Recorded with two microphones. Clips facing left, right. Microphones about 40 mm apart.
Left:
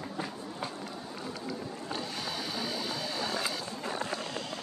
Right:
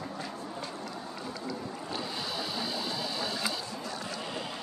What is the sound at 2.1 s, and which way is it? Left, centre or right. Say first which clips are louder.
Printer: right 1 dB; right.